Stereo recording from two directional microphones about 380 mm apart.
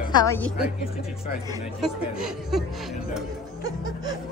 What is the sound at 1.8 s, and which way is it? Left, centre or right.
Speech, centre.